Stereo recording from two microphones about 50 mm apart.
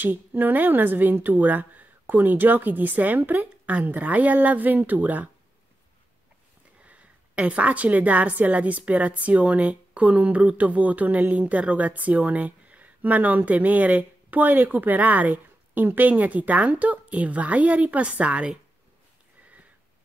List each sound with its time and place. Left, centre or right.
0.0 s a woman's voice: right
6.8 s a woman's voice: right